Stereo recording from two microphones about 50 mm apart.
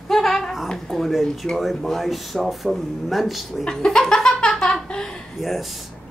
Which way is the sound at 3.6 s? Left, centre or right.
Centre.